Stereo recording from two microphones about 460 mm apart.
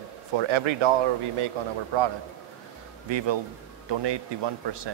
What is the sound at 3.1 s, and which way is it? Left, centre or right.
Speech, right.